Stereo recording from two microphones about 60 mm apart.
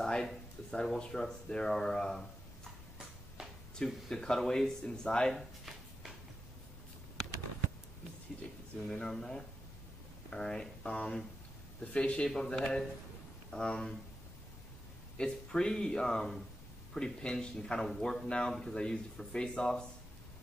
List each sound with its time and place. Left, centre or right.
0.0 s speech: centre
3.7 s speech: centre
8.8 s speech: centre
15.1 s speech: centre